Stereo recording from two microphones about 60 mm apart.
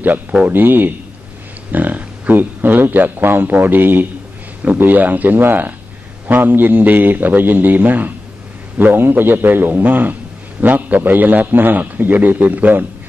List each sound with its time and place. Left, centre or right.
0.5 s a man's voice: right